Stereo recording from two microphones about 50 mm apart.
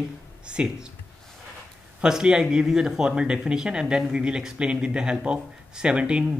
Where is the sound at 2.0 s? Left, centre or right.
Centre.